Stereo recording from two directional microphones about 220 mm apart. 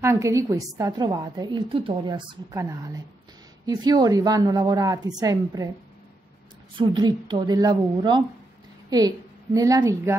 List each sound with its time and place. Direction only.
0.0 s a woman's voice: 15° right (ahead or behind)
6.8 s a woman's voice: 20° right (ahead or behind)